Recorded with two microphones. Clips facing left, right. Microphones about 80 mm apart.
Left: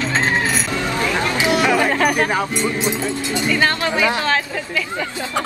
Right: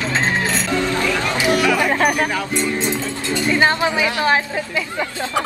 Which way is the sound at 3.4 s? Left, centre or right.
Right.